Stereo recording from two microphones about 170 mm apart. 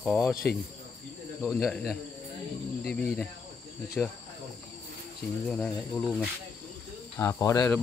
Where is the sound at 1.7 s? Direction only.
Centre (ahead or behind).